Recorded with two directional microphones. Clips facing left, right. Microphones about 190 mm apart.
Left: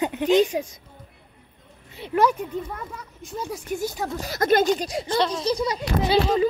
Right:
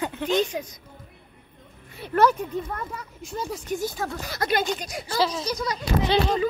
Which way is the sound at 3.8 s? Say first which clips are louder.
Left 1 dB; 15° left (ahead or behind).